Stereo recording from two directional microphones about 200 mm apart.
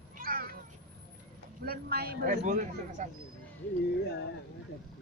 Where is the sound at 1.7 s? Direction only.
50° right (ahead or behind).